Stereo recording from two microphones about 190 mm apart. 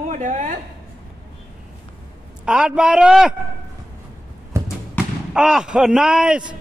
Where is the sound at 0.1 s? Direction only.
40° right (ahead or behind).